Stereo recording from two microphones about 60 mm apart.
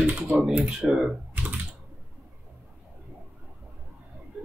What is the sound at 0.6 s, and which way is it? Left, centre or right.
Speech, centre.